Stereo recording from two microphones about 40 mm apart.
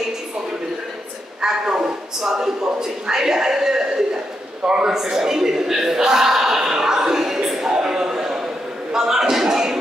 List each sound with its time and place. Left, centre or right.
1.4 s a woman's voice: centre